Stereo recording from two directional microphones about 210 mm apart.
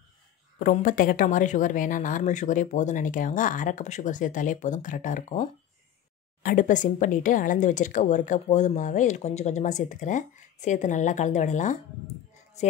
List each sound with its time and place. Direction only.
0.6 s speech: 40° left (ahead or behind)
6.4 s speech: 40° left (ahead or behind)